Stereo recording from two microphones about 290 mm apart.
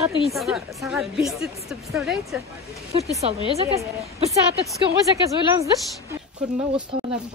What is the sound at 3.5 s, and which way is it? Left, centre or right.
Speech, centre.